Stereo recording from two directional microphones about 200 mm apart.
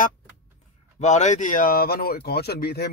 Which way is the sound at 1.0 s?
35° left (ahead or behind).